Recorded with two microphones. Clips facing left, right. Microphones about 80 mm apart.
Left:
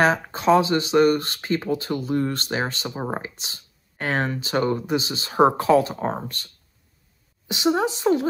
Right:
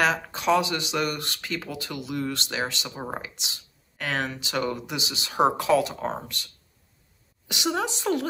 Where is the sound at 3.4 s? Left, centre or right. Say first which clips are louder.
Even; left.